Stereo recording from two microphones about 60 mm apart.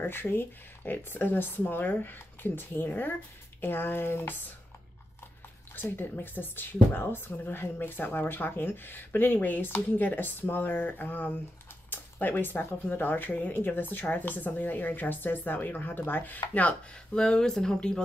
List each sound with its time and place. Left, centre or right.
0.0 s a woman's voice: left
5.8 s a woman's voice: left
11.9 s a sound: left
12.9 s a woman's voice: left
17.1 s speech: centre